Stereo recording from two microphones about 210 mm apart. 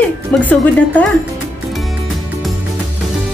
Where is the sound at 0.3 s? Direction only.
5° left (ahead or behind).